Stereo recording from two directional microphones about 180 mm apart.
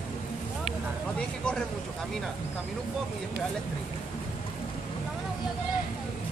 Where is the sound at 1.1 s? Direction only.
5° left (ahead or behind).